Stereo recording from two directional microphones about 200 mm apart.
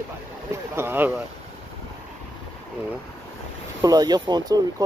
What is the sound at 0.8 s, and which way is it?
Speech, 10° right (ahead or behind).